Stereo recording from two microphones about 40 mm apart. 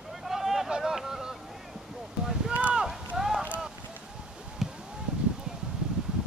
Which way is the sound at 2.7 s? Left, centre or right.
Centre.